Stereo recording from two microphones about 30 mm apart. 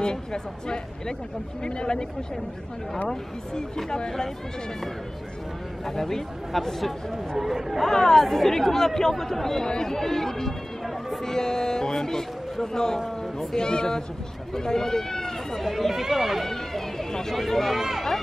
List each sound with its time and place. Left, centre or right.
0.0 s speech: left
3.1 s speech: centre
5.9 s a man's voice: centre
7.4 s speech: centre
7.9 s speech: centre
8.2 s a man's voice: centre
9.7 s speech: left
9.9 s a man's voice: centre
13.2 s a sound: centre
13.6 s speech: left
15.6 s speech: centre
16.7 s a sound: centre
17.4 s a man's voice: centre
17.7 s speech: centre